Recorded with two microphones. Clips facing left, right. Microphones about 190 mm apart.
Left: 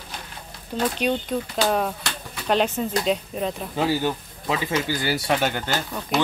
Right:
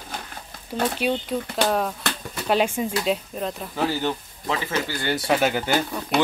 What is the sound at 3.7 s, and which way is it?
Speech, 15° left (ahead or behind).